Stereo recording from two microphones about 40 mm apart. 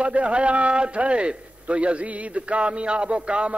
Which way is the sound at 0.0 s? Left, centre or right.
Right.